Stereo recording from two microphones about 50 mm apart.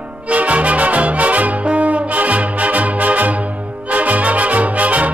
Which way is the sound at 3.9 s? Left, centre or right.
Right.